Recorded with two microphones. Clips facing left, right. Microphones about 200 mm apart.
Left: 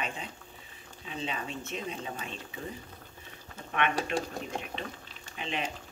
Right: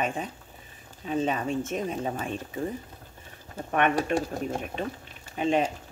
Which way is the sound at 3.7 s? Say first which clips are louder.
Right 6 dB; 45° right (ahead or behind).